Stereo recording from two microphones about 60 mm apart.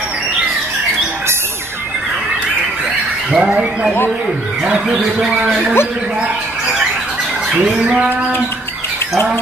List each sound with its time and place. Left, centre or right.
3.3 s speech: centre
4.6 s speech: centre
7.5 s a sound: centre